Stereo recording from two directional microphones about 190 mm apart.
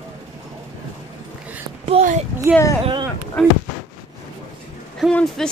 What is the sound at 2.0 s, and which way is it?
Speech, 30° right (ahead or behind).